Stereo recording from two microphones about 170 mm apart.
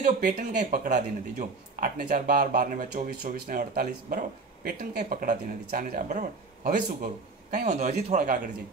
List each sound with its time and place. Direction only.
0.0 s speech: 50° right (ahead or behind)
7.5 s speech: 45° right (ahead or behind)